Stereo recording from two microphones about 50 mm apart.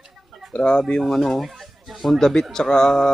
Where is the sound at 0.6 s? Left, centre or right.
Centre.